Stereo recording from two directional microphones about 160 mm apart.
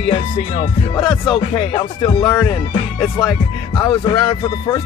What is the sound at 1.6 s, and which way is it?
Music, 35° left (ahead or behind).